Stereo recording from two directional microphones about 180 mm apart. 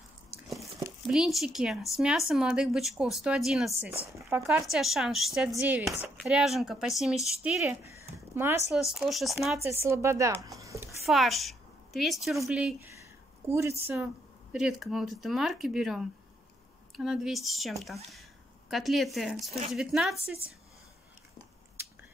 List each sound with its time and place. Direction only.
1.1 s speech: centre (ahead or behind)
4.2 s speech: 15° right (ahead or behind)
4.6 s speech: centre (ahead or behind)
7.8 s a sound: 15° right (ahead or behind)
8.7 s speech: centre (ahead or behind)
9.6 s speech: 15° right (ahead or behind)
11.1 s a woman's voice: centre (ahead or behind)
13.5 s speech: 15° right (ahead or behind)
21.8 s biting: 15° right (ahead or behind)